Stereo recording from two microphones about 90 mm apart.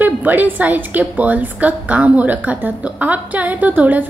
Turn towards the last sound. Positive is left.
turn(degrees=-20)  # may be behind; listen again after turning